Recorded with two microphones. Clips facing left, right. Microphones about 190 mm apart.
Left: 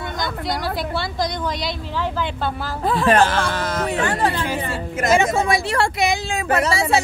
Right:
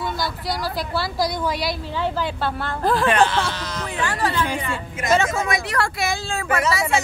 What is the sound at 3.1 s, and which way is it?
Speech, 45° left (ahead or behind).